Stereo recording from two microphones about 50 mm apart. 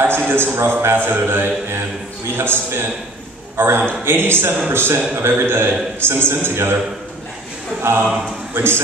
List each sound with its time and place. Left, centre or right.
0.3 s a man's voice: right
7.8 s a man's voice: right